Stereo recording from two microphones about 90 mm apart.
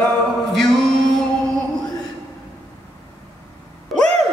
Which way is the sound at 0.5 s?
5° left (ahead or behind).